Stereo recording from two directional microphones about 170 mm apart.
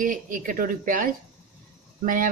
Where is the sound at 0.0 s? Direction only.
50° right (ahead or behind).